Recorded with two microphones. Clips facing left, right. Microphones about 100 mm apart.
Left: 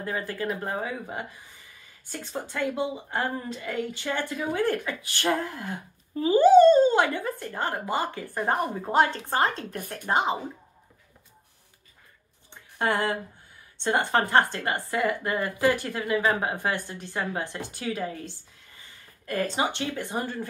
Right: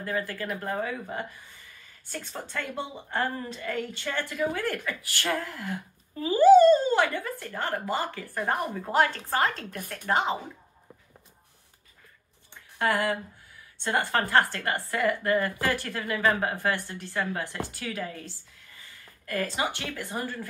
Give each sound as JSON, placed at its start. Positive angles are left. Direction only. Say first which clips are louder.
{"t": 0.0, "sound": "a woman's voice", "louder": "left 1 dB", "side_deg": 20}
{"t": 12.7, "sound": "a woman's voice", "louder": "even", "side_deg": 25}